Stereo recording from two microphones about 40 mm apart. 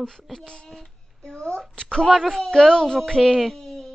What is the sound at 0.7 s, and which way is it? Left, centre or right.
A woman's voice, centre.